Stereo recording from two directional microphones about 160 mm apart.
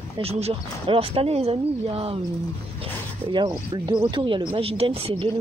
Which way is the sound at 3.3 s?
30° right (ahead or behind).